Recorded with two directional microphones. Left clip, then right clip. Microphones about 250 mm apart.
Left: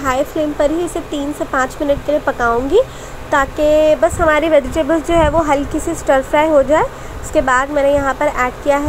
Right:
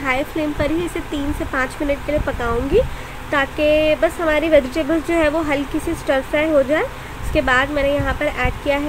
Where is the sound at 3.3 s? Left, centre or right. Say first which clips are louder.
Left 4 dB; centre.